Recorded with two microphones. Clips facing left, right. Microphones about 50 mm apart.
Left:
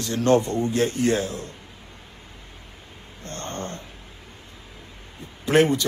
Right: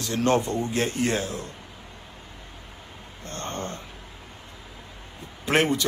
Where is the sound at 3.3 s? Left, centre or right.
Right.